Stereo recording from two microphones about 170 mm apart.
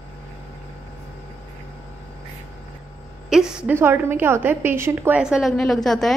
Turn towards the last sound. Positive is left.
turn(degrees=0)  # may be behind; listen again after turning